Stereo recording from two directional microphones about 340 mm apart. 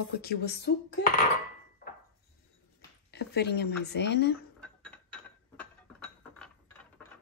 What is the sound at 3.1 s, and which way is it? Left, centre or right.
Speech, left.